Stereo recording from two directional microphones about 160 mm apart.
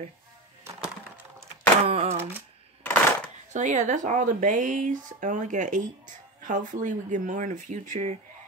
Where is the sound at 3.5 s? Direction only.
50° right (ahead or behind).